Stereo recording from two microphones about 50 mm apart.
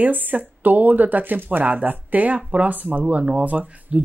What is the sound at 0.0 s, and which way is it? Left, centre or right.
Speech, right.